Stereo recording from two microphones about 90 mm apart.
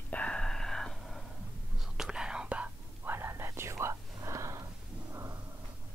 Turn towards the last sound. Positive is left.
turn(degrees=-35)  # may be behind; listen again after turning